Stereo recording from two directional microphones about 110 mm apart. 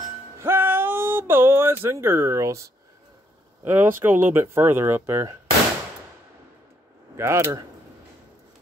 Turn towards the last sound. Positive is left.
turn(degrees=-25)  # may be behind; listen again after turning